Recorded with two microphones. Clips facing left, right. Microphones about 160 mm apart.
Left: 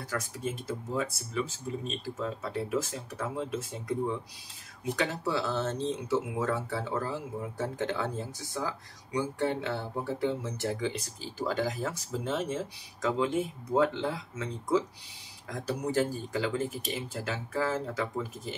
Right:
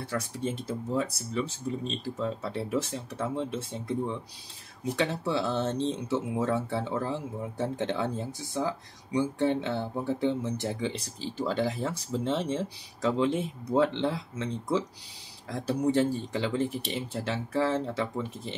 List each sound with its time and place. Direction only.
0.0 s speech: 30° right (ahead or behind)